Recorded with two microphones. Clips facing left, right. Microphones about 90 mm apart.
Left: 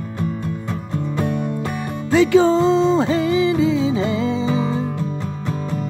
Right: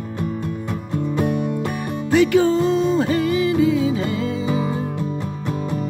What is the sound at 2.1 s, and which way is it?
Music, 20° left (ahead or behind).